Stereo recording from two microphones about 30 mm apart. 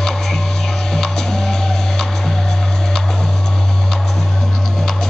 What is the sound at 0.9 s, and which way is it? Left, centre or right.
Music, centre.